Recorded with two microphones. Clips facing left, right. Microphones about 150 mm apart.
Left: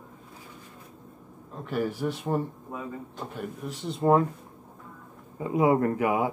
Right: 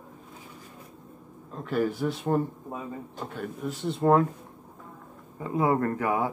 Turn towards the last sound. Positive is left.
turn(degrees=15)  # may be behind; listen again after turning